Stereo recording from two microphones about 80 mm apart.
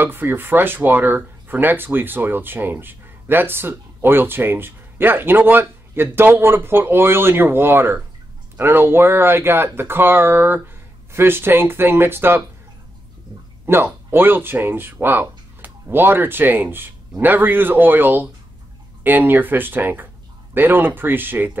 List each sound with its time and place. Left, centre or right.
0.0 s speech: right
13.7 s speech: right